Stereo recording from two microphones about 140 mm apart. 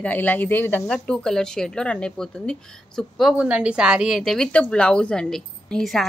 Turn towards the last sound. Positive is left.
turn(degrees=5)  # may be behind; listen again after turning